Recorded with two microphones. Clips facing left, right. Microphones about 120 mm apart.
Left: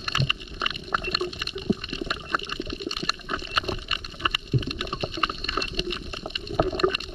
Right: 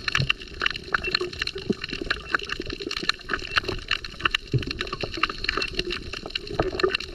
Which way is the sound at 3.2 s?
20° left (ahead or behind).